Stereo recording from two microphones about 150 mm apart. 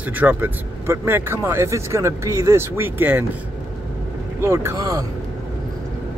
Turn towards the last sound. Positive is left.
turn(degrees=-25)  # may be behind; listen again after turning